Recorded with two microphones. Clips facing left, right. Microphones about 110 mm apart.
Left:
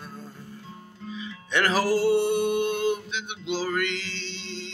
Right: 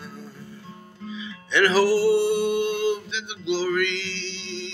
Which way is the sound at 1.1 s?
45° left (ahead or behind).